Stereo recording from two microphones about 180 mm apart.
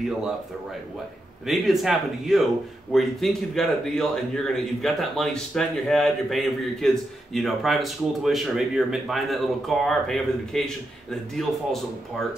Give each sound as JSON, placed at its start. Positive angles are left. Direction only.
{"t": 1.5, "sound": "speech", "side_deg": 0}